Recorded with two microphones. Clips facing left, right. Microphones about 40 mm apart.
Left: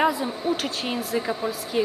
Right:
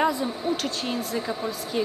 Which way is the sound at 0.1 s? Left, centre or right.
Centre.